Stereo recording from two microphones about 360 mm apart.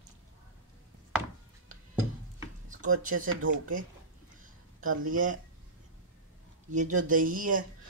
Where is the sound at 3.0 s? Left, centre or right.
Right.